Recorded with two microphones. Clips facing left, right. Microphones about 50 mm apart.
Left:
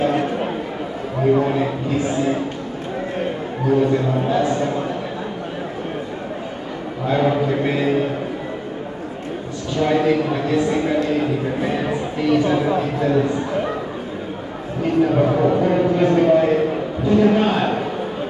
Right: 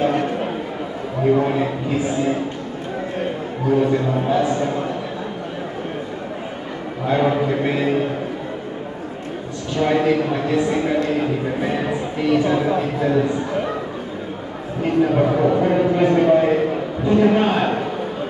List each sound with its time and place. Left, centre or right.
0.0 s a sound: centre
1.4 s a man's voice: centre
3.7 s a man's voice: centre
7.1 s a man's voice: centre
9.8 s a man's voice: centre
15.0 s a sound: centre